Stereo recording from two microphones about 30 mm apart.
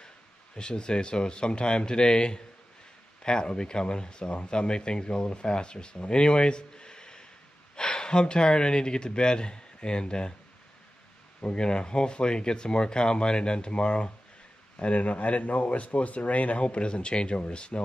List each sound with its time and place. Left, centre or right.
0.6 s speech: left
11.5 s speech: left
14.8 s speech: left